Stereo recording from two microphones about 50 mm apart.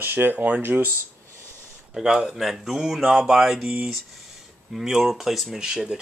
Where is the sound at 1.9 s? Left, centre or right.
Centre.